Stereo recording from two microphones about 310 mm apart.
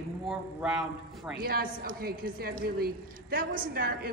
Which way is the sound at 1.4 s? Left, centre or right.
Right.